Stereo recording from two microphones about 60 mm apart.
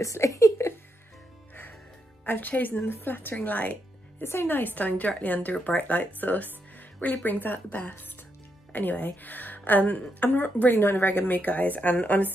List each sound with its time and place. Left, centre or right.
0.0 s a sound: left
1.5 s music: left
2.2 s a woman's voice: left
4.2 s a woman's voice: left